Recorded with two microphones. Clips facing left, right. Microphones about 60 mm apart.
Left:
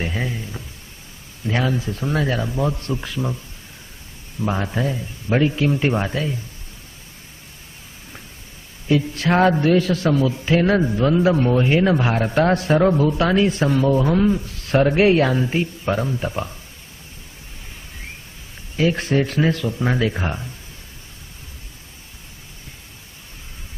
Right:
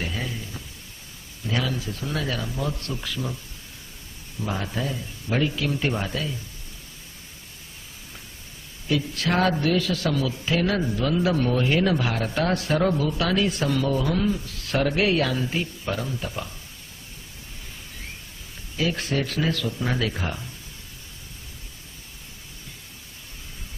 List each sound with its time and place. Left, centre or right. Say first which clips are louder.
0.0 s a sound: left 5 dB; left
1.4 s a man's voice: left 5 dB; left
4.5 s a man's voice: left 6 dB; left
8.8 s a man's voice: left 6 dB; left
18.8 s a man's voice: left 7 dB; left